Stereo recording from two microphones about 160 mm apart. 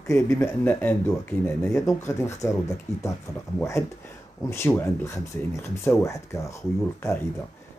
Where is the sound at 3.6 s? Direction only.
20° left (ahead or behind).